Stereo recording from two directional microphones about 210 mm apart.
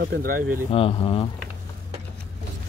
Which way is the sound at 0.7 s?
25° left (ahead or behind).